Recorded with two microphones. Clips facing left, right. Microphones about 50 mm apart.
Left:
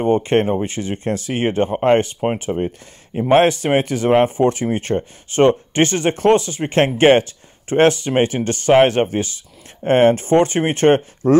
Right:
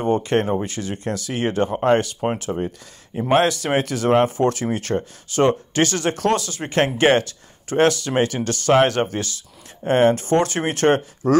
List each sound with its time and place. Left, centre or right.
0.0 s speech: left